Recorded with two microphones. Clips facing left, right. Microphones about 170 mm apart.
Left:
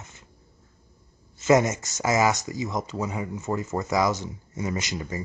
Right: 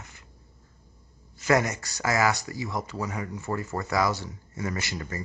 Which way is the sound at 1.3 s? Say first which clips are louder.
Left 4 dB; 20° left (ahead or behind).